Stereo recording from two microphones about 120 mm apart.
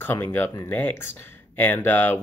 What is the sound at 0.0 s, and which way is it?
Speech, 15° left (ahead or behind).